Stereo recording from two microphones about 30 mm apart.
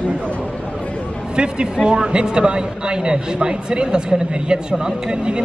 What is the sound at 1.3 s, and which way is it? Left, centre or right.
A man's voice, right.